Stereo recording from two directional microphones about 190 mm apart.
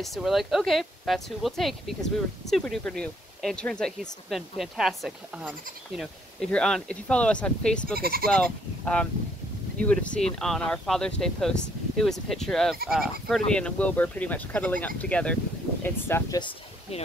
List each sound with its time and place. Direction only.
0.0 s speech: centre (ahead or behind)
7.9 s speech: 50° right (ahead or behind)
8.3 s speech: 5° left (ahead or behind)
16.3 s a sound: 25° left (ahead or behind)